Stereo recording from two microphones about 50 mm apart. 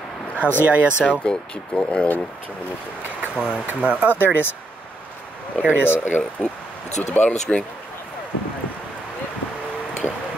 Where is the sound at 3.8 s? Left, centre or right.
Right.